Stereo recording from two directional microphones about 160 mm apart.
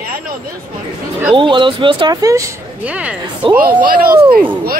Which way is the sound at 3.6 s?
65° right (ahead or behind).